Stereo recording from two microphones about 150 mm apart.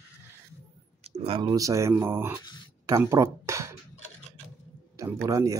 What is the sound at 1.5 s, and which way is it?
Speech, 20° right (ahead or behind).